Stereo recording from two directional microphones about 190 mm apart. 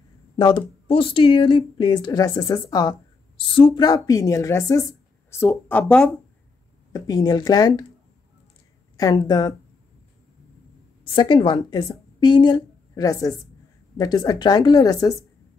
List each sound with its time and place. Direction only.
0.4 s speech: 25° left (ahead or behind); by 6.1 s 5° left (ahead or behind)
6.9 s speech: 20° left (ahead or behind)
8.9 s speech: 20° left (ahead or behind)
11.1 s a woman's voice: 25° left (ahead or behind)